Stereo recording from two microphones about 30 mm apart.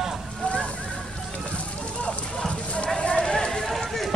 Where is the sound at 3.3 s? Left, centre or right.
Left.